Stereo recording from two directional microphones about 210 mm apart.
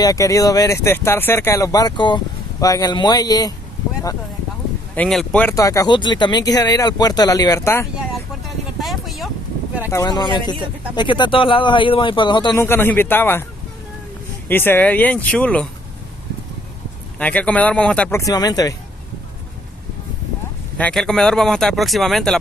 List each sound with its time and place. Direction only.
0.0 s speech: 15° left (ahead or behind)
4.9 s speech: 5° left (ahead or behind)
8.8 s a sound: centre (ahead or behind)
9.8 s speech: 15° left (ahead or behind)
14.5 s speech: 10° left (ahead or behind)
17.2 s speech: 5° left (ahead or behind)
20.7 s speech: 5° left (ahead or behind)